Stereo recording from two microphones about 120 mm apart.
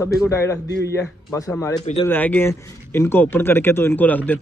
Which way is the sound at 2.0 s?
15° left (ahead or behind).